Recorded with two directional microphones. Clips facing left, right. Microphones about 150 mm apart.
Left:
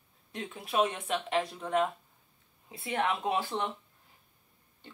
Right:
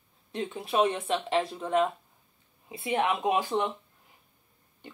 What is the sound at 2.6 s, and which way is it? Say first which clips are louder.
Speech: right 4 dB; 15° right (ahead or behind).